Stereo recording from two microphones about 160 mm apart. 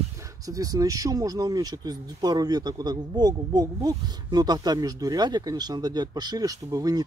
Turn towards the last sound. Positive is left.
turn(degrees=-25)  # may be behind; listen again after turning